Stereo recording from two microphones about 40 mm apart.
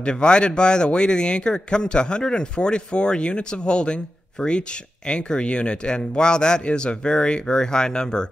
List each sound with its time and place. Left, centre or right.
0.0 s speech: left